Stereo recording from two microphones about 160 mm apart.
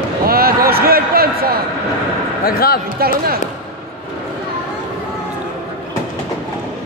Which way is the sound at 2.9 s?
70° right (ahead or behind).